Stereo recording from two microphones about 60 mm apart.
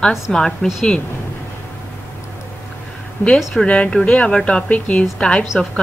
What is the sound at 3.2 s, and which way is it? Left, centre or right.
Speech, left.